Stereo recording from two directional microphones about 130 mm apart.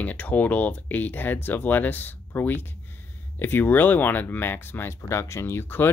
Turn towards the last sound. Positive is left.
turn(degrees=15)  # may be behind; listen again after turning